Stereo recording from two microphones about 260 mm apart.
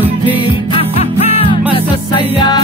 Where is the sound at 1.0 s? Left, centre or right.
Left.